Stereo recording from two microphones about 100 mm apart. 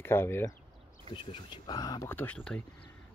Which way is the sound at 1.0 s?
55° left (ahead or behind).